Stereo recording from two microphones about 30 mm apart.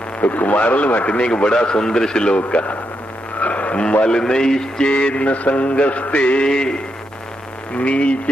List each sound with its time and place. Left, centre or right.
0.2 s speech: left
1.1 s a man's voice: left
2.3 s mantra: left
3.3 s a sound: left
4.2 s a man's voice: left
4.8 s mantra: left
6.4 s a man's voice: left
7.7 s mantra: left